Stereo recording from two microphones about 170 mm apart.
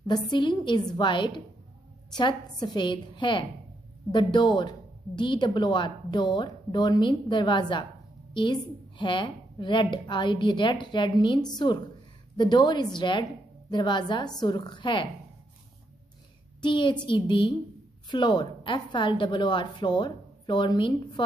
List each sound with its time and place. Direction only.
0.0 s a woman's voice: 25° left (ahead or behind)
16.6 s a woman's voice: 30° left (ahead or behind)